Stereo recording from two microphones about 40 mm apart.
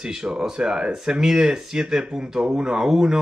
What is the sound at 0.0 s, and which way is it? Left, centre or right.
Speech, centre.